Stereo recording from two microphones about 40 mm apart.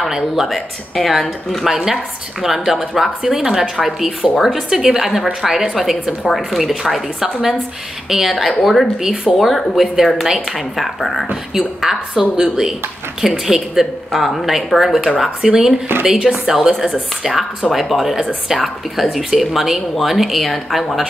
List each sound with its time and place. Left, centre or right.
0.5 s speech: centre
1.7 s a woman's voice: centre
9.0 s a woman's voice: centre
11.5 s a woman's voice: centre